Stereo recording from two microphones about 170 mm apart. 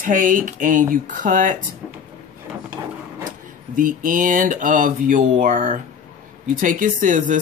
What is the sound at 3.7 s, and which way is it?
Speech, 55° right (ahead or behind).